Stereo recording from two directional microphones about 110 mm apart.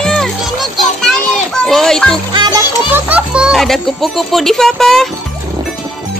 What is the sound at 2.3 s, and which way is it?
Speech, 40° right (ahead or behind).